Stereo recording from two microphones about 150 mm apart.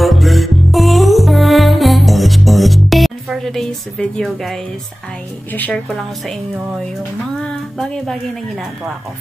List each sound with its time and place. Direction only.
0.0 s music: centre (ahead or behind)
5.5 s speech: 10° left (ahead or behind)
7.4 s speech: 5° left (ahead or behind)